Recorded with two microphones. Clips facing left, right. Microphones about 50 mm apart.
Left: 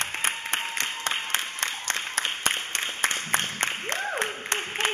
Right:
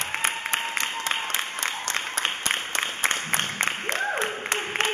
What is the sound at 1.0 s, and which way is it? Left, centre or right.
Applause, left.